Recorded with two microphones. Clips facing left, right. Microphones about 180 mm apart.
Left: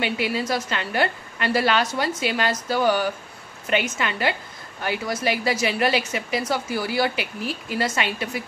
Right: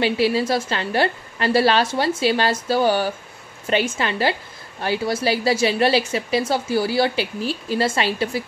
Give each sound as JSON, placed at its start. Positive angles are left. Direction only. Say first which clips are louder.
{"t": 0.0, "sound": "a woman's voice", "louder": "right 6 dB", "side_deg": -30}